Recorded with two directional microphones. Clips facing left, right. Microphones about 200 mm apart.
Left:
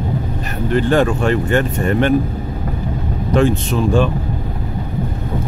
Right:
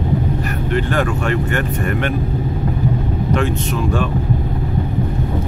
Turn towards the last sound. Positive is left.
turn(degrees=30)  # may be behind; listen again after turning